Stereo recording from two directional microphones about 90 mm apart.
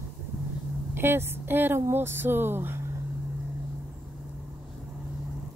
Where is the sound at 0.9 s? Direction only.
25° right (ahead or behind).